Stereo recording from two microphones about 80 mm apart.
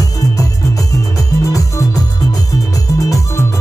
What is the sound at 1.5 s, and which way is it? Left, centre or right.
Music, left.